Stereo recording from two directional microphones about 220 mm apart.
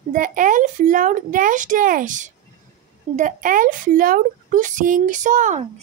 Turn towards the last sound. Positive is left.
turn(degrees=-35)  # may be behind; listen again after turning